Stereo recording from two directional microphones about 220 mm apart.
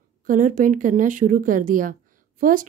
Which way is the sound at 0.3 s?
35° right (ahead or behind).